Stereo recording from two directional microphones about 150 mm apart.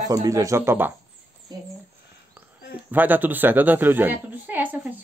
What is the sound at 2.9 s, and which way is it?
A woman's voice, 10° right (ahead or behind).